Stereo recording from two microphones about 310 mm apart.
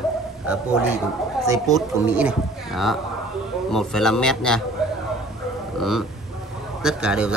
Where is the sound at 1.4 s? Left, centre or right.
Centre.